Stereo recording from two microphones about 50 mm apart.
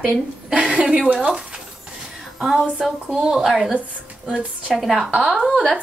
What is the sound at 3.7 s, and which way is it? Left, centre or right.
Speech, right.